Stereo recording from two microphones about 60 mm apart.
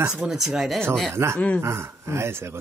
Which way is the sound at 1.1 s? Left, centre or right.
Right.